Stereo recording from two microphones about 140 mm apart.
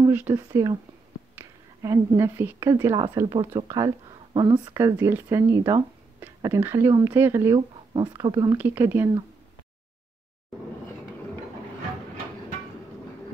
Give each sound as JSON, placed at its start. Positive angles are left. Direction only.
{"t": 0.5, "sound": "a woman's voice", "side_deg": -20}
{"t": 4.7, "sound": "speech", "side_deg": -20}
{"t": 5.6, "sound": "speech", "side_deg": -30}
{"t": 6.4, "sound": "speech", "side_deg": -20}
{"t": 7.5, "sound": "speech", "side_deg": -30}
{"t": 8.5, "sound": "speech", "side_deg": -15}